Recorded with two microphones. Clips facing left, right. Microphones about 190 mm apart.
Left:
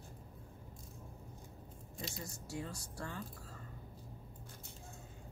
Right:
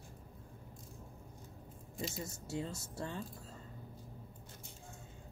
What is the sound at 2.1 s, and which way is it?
Speech, 25° right (ahead or behind).